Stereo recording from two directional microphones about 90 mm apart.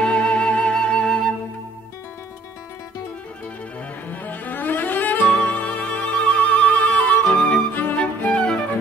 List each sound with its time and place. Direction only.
0.0 s flute: 15° left (ahead or behind)
4.1 s cello: 20° left (ahead or behind)
7.7 s music: 15° left (ahead or behind)